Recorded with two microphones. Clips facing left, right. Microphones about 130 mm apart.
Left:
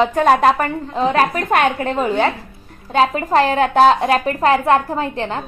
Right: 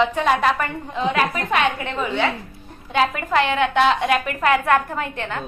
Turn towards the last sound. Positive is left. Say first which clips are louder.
# left 5 dB
turn(degrees=30)  # may be behind; listen again after turning